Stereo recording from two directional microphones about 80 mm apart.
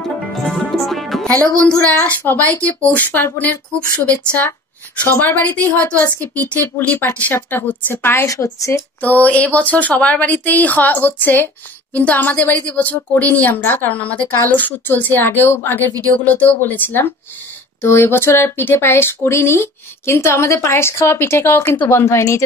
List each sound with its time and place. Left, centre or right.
0.0 s music: centre
1.9 s a woman's voice: centre
8.3 s speech: left
9.0 s a woman's voice: left